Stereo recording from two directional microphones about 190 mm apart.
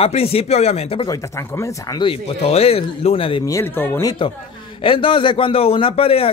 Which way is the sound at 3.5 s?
15° left (ahead or behind).